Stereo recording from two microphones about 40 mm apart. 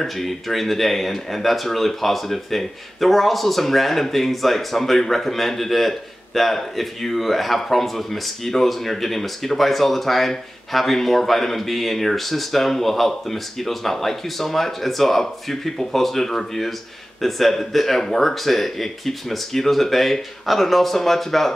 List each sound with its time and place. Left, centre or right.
0.0 s speech: centre